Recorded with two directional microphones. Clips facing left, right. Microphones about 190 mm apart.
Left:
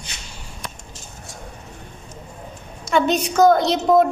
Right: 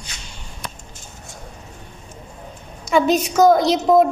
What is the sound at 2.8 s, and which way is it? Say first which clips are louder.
A woman's voice: right 2 dB; 5° right (ahead or behind).